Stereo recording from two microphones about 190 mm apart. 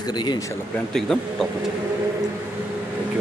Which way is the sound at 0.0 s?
20° left (ahead or behind).